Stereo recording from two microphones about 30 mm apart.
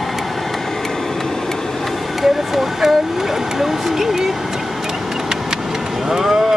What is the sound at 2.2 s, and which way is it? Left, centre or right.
Vehicle, centre.